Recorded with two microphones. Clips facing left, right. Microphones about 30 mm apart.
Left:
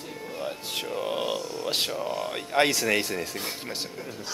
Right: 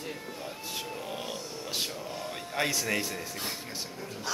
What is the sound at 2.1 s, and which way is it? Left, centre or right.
Speech, left.